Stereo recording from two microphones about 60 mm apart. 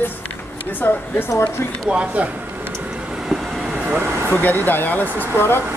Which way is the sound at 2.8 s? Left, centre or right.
Centre.